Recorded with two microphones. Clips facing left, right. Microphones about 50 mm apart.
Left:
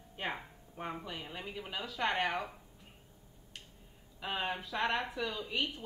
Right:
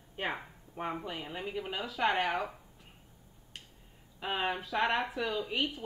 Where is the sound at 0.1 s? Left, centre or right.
Centre.